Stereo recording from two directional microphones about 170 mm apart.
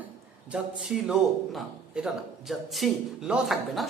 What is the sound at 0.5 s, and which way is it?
A man's voice, 5° right (ahead or behind).